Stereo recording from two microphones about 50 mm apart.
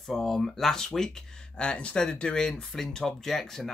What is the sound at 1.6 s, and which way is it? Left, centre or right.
Speech, left.